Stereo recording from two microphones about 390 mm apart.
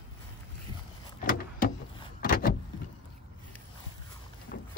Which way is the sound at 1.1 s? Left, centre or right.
Left.